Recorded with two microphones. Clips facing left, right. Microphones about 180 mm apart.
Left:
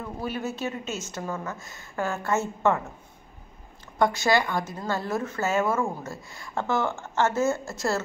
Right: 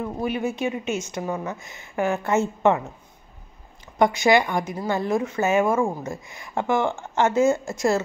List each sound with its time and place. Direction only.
0.0 s speech: 15° right (ahead or behind)
4.0 s speech: 20° right (ahead or behind)